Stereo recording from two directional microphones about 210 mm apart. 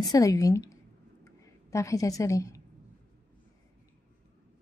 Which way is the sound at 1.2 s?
15° left (ahead or behind).